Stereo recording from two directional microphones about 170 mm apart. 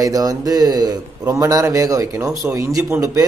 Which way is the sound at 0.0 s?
20° right (ahead or behind).